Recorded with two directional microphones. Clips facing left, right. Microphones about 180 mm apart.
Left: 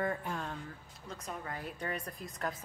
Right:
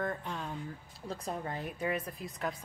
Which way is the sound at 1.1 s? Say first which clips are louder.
Right 4 dB; 30° right (ahead or behind).